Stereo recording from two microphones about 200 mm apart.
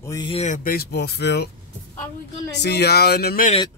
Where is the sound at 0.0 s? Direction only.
15° left (ahead or behind).